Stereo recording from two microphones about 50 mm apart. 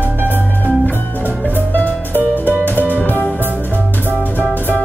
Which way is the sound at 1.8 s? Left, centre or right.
Left.